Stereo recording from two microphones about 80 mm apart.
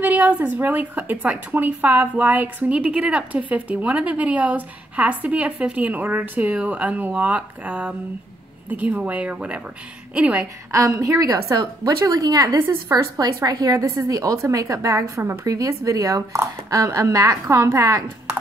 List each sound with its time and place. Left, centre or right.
0.0 s a woman's voice: centre
10.7 s a woman's voice: right
13.5 s a woman's voice: right
13.7 s a woman's voice: right